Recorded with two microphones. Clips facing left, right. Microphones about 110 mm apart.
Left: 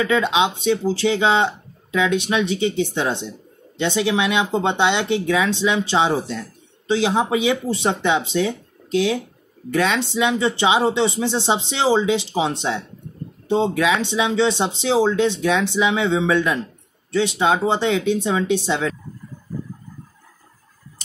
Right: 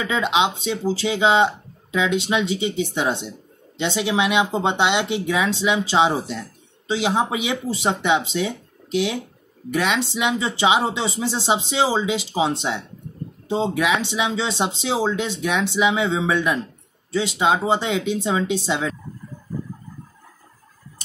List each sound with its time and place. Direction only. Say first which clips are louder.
0.0 s speech: left 2 dB; 15° right (ahead or behind)
13.7 s speech: left 2 dB; 15° right (ahead or behind)